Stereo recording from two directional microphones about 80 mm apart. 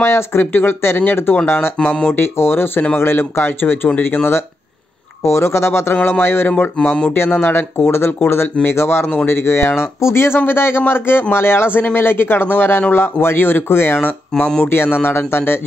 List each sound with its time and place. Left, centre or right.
0.0 s speech: left